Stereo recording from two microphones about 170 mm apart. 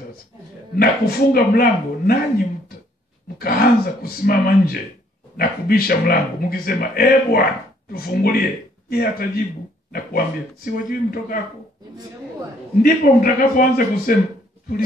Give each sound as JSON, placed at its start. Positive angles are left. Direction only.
{"t": 0.7, "sound": "a man's voice", "side_deg": 60}
{"t": 3.3, "sound": "a man's voice", "side_deg": 60}
{"t": 12.8, "sound": "a man's voice", "side_deg": 55}